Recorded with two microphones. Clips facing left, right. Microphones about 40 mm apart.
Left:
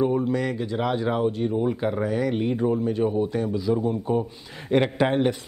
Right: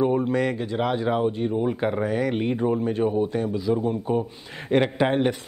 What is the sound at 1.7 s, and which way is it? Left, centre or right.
Speech, right.